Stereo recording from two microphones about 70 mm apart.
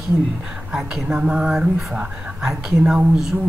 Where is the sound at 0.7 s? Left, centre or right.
Centre.